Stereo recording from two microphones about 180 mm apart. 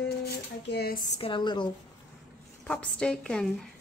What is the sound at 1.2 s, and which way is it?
Speech, 30° left (ahead or behind).